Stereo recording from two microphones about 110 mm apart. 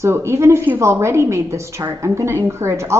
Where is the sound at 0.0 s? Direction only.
25° right (ahead or behind).